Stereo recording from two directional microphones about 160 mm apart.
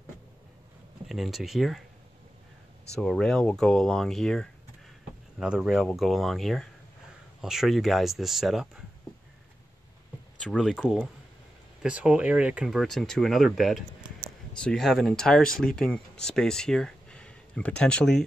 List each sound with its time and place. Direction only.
1.0 s speech: centre (ahead or behind)
3.0 s speech: 5° left (ahead or behind)
10.4 s speech: 5° left (ahead or behind)